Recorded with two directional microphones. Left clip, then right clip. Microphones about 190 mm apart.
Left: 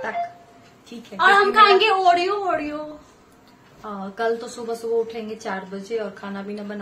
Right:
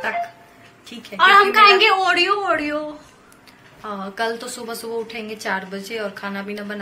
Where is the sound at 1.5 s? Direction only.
25° left (ahead or behind).